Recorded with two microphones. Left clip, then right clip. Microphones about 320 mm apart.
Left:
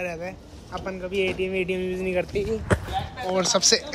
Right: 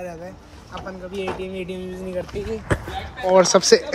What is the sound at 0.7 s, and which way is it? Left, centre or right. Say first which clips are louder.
Speech: left 2 dB; centre.